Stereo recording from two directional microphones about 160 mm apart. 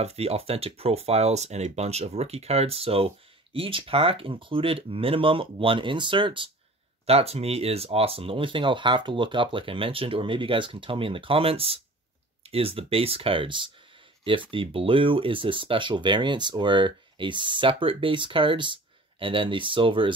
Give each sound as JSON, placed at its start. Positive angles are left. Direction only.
{"t": 0.0, "sound": "speech", "side_deg": -40}